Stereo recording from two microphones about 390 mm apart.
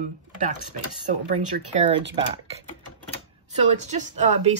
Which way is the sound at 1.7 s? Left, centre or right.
Right.